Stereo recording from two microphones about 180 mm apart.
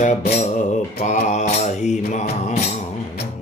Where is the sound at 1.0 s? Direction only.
40° left (ahead or behind).